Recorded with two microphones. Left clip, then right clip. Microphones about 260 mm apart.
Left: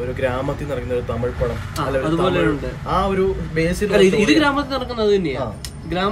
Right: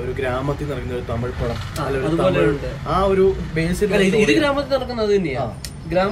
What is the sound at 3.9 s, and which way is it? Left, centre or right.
A man's voice, centre.